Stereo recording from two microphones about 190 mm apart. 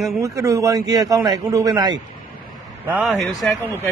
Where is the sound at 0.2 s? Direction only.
15° right (ahead or behind).